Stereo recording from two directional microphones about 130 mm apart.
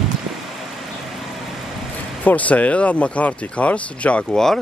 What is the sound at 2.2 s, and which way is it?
Speech, 10° left (ahead or behind).